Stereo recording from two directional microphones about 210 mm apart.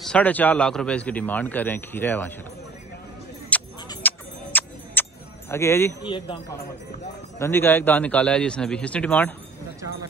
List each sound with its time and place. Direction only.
0.0 s a man's voice: 5° left (ahead or behind)
3.5 s a sound: 5° left (ahead or behind)
5.5 s a man's voice: 10° left (ahead or behind)
6.0 s speech: 25° left (ahead or behind)
7.3 s a man's voice: 10° left (ahead or behind)